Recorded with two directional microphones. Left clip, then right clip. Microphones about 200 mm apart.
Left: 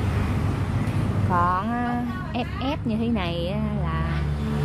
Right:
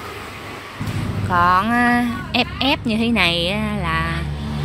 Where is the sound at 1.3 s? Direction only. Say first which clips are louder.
Right 8 dB; 10° right (ahead or behind).